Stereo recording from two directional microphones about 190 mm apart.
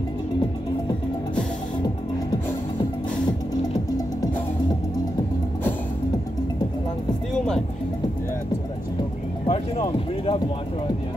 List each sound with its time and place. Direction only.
7.3 s music: 5° left (ahead or behind)
9.5 s music: 30° left (ahead or behind)